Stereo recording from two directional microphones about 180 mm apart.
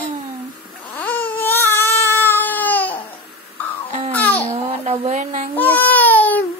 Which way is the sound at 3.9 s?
35° right (ahead or behind).